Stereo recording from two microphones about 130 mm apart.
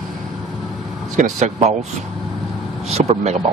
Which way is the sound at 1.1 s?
65° right (ahead or behind).